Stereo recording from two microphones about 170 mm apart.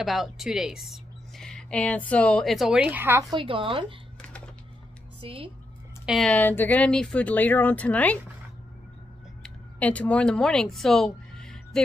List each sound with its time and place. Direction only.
0.0 s speech: centre (ahead or behind)
3.3 s a woman's voice: 30° right (ahead or behind)
5.2 s a woman's voice: 35° right (ahead or behind)
6.0 s speech: centre (ahead or behind)
9.4 s speech: 10° left (ahead or behind)